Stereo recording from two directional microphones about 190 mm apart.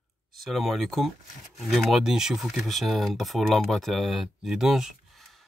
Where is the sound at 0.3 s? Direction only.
Centre (ahead or behind).